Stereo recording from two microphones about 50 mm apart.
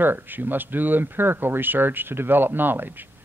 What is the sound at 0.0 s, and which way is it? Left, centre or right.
Speech, right.